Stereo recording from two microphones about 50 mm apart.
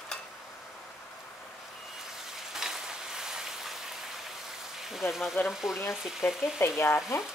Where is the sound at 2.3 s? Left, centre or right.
Centre.